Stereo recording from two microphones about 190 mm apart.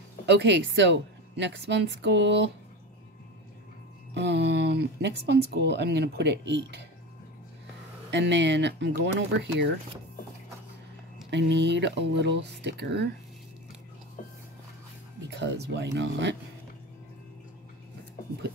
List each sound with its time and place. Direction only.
0.3 s a woman's voice: 65° right (ahead or behind)
4.1 s speech: 65° right (ahead or behind)
8.1 s a woman's voice: 70° right (ahead or behind)
11.2 s speech: 65° right (ahead or behind)
15.2 s a woman's voice: 65° right (ahead or behind)